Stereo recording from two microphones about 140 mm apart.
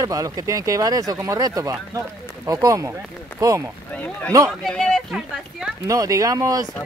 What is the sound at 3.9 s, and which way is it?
Speech, 10° left (ahead or behind).